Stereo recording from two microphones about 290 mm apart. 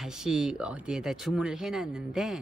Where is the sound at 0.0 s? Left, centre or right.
Centre.